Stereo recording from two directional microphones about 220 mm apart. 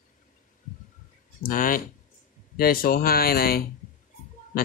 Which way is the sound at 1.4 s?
40° left (ahead or behind).